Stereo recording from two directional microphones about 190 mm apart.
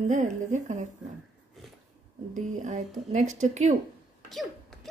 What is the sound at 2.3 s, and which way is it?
Speech, 40° right (ahead or behind).